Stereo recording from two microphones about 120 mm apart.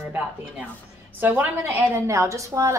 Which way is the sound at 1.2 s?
15° right (ahead or behind).